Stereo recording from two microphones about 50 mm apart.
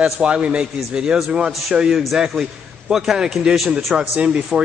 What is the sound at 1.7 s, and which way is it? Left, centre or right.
A man's voice, centre.